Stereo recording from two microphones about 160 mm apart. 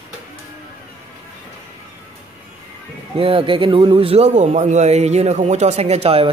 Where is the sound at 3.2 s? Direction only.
35° right (ahead or behind).